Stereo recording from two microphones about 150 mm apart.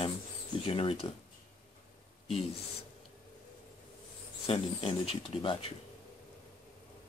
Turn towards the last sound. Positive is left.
turn(degrees=35)  # may be behind; listen again after turning